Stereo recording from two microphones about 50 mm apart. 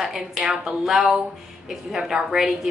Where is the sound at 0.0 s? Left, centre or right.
Centre.